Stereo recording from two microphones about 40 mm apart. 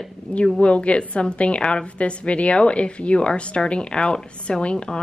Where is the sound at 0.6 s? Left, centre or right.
Left.